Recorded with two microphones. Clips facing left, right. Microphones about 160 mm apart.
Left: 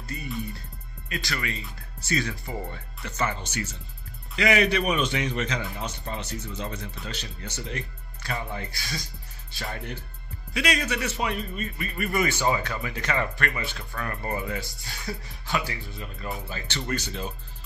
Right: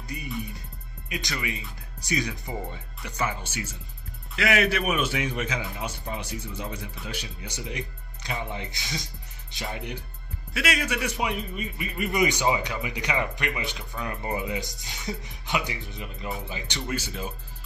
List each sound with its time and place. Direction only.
0.1 s a man's voice: 15° right (ahead or behind)